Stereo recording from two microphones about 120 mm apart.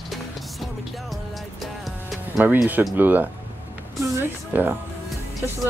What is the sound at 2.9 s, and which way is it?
Speech, 15° right (ahead or behind).